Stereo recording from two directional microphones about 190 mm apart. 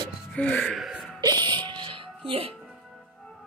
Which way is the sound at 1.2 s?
25° right (ahead or behind).